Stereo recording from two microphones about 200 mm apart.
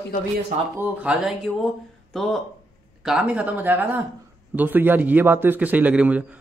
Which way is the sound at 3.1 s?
5° right (ahead or behind).